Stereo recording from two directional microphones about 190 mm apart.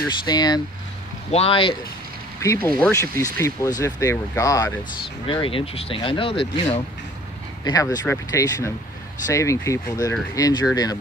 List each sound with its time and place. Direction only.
0.2 s speech: 20° left (ahead or behind)
2.4 s speech: 15° left (ahead or behind)
5.2 s speech: 25° left (ahead or behind)